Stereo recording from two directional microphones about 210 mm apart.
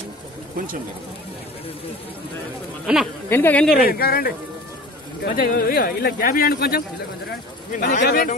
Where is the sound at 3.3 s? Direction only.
10° left (ahead or behind).